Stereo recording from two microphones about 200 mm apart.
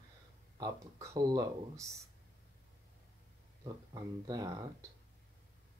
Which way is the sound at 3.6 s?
20° right (ahead or behind).